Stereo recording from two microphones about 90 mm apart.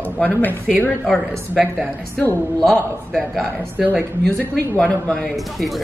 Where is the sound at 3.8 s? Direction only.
15° right (ahead or behind).